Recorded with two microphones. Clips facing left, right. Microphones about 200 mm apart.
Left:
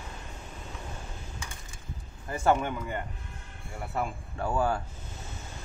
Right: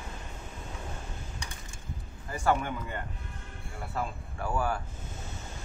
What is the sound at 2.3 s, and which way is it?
Speech, 25° left (ahead or behind).